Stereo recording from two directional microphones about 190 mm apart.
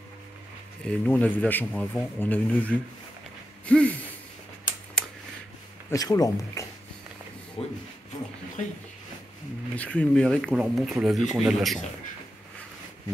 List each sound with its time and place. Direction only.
0.8 s speech: 5° left (ahead or behind)
3.6 s a sound: 5° left (ahead or behind)
5.9 s speech: 20° left (ahead or behind)
7.6 s speech: 30° left (ahead or behind)
9.8 s speech: 5° left (ahead or behind)